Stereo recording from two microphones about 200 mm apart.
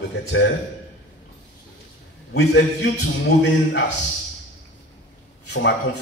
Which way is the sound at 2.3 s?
90° left.